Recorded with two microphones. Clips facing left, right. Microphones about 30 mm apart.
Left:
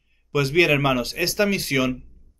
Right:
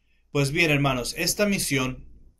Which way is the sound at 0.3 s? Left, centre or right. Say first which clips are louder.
Left 4 dB; centre.